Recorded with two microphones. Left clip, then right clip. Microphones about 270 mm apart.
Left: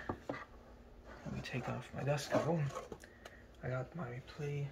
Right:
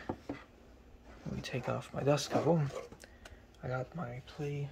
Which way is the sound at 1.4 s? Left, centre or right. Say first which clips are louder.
Right 6 dB; centre.